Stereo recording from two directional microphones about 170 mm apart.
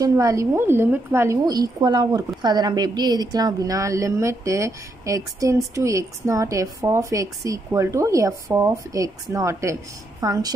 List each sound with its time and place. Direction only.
0.0 s a woman's voice: 20° right (ahead or behind)